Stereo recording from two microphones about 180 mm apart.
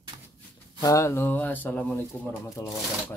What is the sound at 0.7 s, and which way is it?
Speech, 20° left (ahead or behind).